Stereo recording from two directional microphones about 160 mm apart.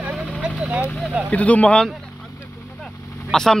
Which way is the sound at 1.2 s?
10° left (ahead or behind).